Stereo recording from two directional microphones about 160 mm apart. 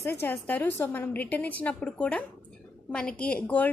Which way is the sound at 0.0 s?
15° left (ahead or behind).